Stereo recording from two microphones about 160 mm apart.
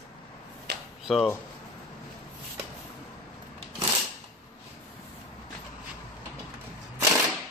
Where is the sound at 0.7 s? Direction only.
90° right.